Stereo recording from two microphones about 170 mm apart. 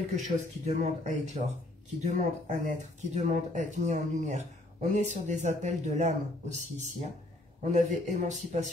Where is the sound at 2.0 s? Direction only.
45° right (ahead or behind).